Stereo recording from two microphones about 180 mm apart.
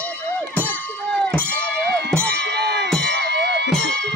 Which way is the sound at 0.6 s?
10° left (ahead or behind).